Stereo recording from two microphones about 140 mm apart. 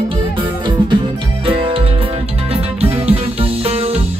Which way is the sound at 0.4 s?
35° right (ahead or behind).